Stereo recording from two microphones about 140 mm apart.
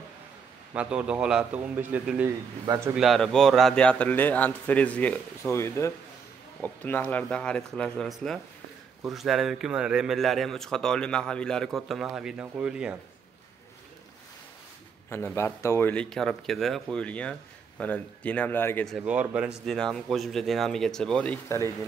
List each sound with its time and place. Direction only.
0.7 s a man's voice: 5° right (ahead or behind)
15.0 s a man's voice: 20° left (ahead or behind)
15.9 s a man's voice: 5° left (ahead or behind)
18.9 s a man's voice: 5° right (ahead or behind)